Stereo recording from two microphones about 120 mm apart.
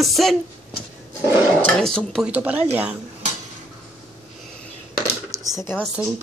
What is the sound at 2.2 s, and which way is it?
Speech, 10° right (ahead or behind).